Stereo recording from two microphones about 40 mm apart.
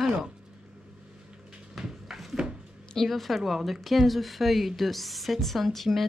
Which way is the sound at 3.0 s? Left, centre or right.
Centre.